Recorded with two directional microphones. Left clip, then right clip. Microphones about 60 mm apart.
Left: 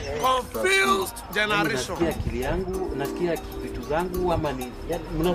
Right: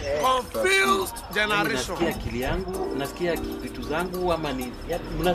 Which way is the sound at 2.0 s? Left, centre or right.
Left.